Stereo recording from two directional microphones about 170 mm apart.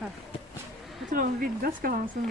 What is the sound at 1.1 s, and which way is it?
Speech, 60° right (ahead or behind).